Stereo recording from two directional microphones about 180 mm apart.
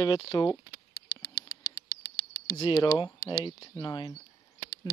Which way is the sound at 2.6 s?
25° left (ahead or behind).